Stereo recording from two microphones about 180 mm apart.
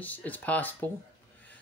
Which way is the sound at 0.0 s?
10° left (ahead or behind).